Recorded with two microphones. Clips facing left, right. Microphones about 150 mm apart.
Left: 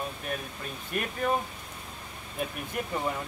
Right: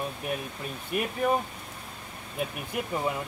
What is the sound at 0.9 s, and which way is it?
Speech, 5° right (ahead or behind).